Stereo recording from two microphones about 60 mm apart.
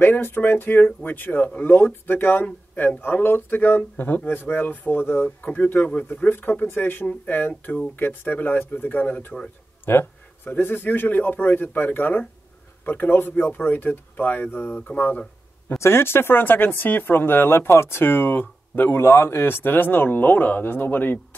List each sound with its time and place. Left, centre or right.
0.0 s speech: left
9.8 s a sound: left
10.6 s speech: left
15.8 s speech: left
18.9 s speech: left